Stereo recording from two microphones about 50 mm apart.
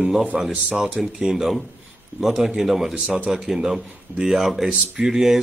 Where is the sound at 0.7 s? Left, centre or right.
Centre.